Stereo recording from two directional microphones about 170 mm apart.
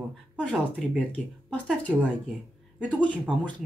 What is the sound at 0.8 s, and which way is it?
Speech, 5° left (ahead or behind).